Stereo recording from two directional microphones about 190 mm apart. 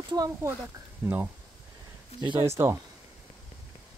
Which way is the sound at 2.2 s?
25° right (ahead or behind).